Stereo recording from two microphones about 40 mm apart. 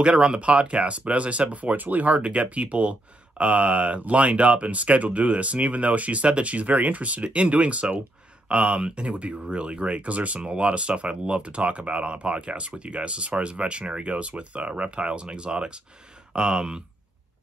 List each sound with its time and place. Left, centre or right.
0.0 s speech: right